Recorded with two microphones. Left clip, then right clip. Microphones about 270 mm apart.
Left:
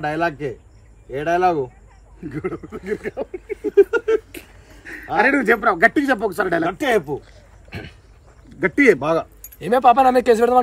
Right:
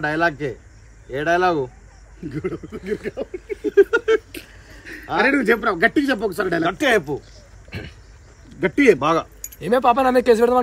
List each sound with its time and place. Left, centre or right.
0.0 s speech: centre
2.2 s speech: centre
3.9 s speech: centre
4.3 s speech: centre
6.6 s speech: centre
7.7 s a sound: centre
8.5 s speech: centre
9.0 s speech: centre
9.6 s speech: centre